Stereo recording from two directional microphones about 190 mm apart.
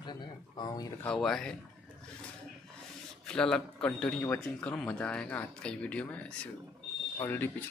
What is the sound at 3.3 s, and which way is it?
A man's voice, 5° left (ahead or behind).